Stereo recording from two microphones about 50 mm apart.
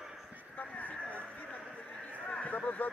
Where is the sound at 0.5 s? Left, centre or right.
Left.